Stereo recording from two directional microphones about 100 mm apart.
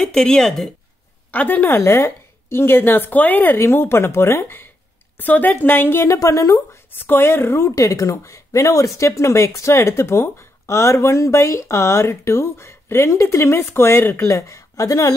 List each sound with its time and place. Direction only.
0.0 s speech: 5° left (ahead or behind)
1.3 s speech: 15° left (ahead or behind); by 15.1 s 35° left (ahead or behind)